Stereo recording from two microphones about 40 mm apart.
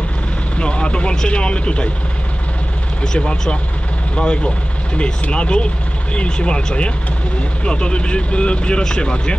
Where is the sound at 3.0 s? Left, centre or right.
Centre.